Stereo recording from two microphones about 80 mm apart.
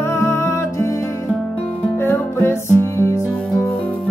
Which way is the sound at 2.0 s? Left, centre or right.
Left.